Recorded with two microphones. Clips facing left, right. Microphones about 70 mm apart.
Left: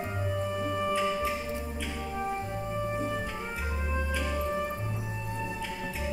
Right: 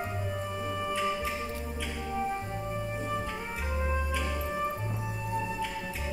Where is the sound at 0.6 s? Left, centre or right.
Centre.